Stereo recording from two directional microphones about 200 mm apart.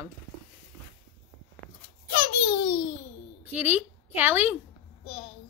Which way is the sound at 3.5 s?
10° right (ahead or behind).